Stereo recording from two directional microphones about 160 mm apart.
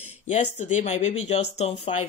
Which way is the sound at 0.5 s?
50° left (ahead or behind).